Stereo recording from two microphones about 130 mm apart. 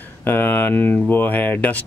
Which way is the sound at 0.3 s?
15° left (ahead or behind).